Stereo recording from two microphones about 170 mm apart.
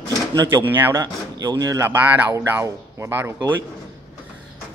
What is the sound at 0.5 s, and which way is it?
Speech, 10° right (ahead or behind).